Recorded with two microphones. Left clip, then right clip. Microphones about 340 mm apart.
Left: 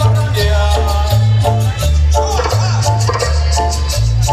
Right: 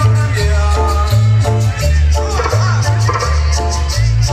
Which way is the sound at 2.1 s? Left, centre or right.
Left.